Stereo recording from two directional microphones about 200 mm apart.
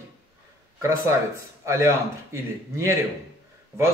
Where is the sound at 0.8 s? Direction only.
15° right (ahead or behind).